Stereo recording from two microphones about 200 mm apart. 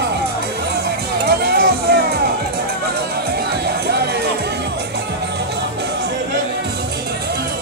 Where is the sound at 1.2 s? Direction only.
50° right (ahead or behind).